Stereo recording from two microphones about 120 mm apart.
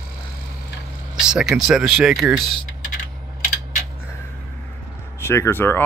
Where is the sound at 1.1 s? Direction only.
5° right (ahead or behind).